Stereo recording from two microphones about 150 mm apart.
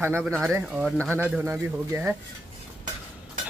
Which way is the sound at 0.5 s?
10° right (ahead or behind).